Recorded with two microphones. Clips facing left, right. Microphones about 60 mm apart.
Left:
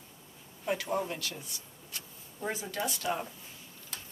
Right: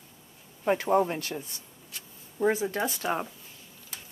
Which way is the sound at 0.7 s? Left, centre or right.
Right.